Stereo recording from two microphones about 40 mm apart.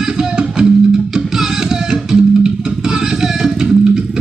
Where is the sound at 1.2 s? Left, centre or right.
Centre.